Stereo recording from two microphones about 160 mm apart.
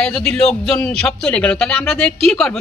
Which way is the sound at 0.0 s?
5° left (ahead or behind).